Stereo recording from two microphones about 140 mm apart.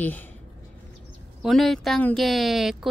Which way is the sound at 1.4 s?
Centre (ahead or behind).